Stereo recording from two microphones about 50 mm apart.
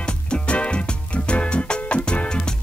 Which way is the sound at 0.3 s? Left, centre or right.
Left.